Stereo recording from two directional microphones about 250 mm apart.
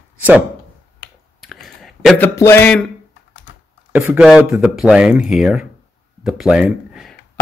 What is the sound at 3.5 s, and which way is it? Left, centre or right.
Typing, left.